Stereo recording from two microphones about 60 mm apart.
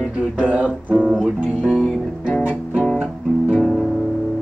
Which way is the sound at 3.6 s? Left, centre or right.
Centre.